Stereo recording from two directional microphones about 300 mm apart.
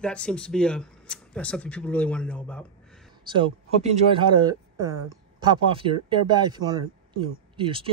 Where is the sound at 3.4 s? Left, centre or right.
Centre.